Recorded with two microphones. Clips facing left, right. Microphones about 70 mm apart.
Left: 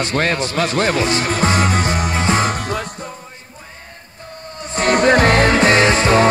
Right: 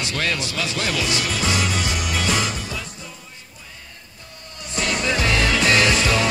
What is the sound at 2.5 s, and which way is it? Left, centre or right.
Music, left.